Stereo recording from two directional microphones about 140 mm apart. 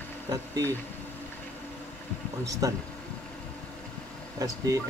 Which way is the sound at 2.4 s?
25° right (ahead or behind).